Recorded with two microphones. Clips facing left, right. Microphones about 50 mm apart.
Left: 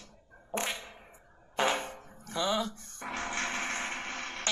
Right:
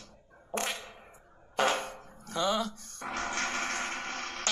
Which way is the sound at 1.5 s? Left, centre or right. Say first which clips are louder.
Right 1 dB; centre.